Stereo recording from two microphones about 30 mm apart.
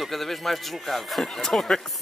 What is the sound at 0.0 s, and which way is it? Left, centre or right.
Speech, centre.